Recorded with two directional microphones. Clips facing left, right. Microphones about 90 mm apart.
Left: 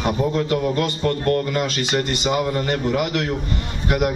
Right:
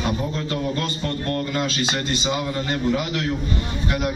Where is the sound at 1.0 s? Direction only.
35° left (ahead or behind).